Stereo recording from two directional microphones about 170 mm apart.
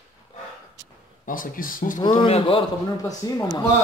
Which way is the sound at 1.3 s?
55° left (ahead or behind).